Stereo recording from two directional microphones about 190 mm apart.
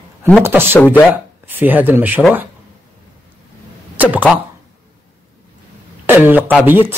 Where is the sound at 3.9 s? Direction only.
10° right (ahead or behind).